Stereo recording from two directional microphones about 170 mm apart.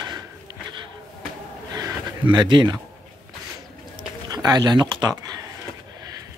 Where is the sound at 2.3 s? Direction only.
25° right (ahead or behind).